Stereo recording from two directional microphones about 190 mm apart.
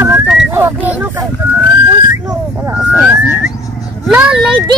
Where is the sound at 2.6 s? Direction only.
10° right (ahead or behind).